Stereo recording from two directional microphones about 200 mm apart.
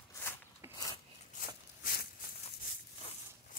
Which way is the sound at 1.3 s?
45° left (ahead or behind).